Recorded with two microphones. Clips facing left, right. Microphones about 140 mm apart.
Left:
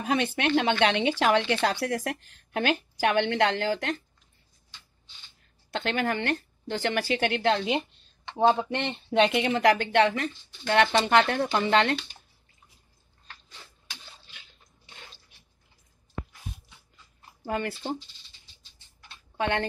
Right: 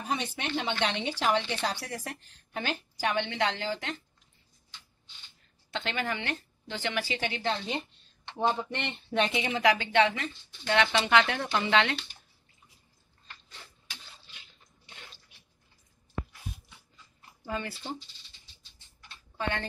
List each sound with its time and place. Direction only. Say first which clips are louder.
0.0 s speech: left 7 dB; 70° left (ahead or behind)
5.7 s speech: left 5 dB; 50° left (ahead or behind)
17.5 s speech: left 5 dB; 55° left (ahead or behind)
19.3 s speech: left 6 dB; 65° left (ahead or behind)